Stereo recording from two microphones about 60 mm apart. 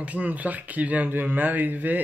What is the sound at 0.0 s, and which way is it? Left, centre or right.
Speech, right.